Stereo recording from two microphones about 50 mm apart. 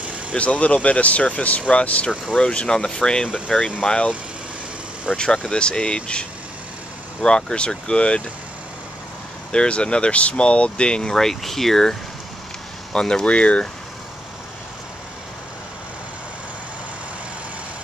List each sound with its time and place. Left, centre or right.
0.3 s speech: left
5.1 s speech: centre
9.5 s speech: centre